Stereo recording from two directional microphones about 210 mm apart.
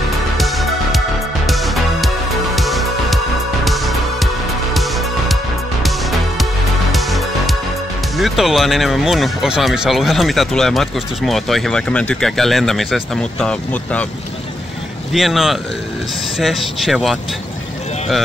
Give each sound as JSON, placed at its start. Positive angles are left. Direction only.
{"t": 0.4, "sound": "music", "side_deg": 0}
{"t": 6.9, "sound": "music", "side_deg": 0}
{"t": 8.2, "sound": "speech", "side_deg": 0}
{"t": 15.1, "sound": "speech", "side_deg": 0}